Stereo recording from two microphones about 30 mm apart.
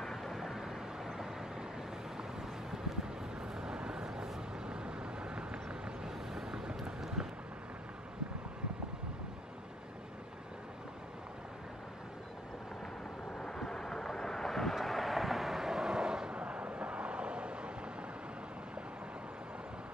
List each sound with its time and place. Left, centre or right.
0.0 s vehicle: centre
3.3 s vehicle: right
6.0 s vehicle: centre
13.6 s vehicle: centre; by 16.3 s right
16.3 s vehicle: right